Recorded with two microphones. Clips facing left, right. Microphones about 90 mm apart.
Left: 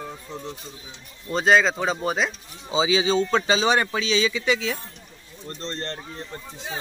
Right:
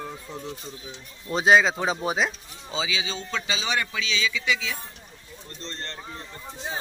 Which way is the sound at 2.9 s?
35° left (ahead or behind).